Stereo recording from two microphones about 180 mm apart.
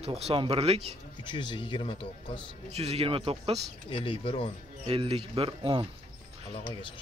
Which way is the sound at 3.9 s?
30° left (ahead or behind).